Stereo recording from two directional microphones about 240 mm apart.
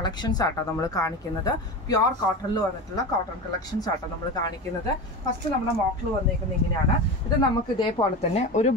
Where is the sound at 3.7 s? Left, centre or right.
Centre.